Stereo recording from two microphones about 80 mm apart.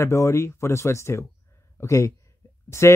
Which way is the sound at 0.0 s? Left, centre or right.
Left.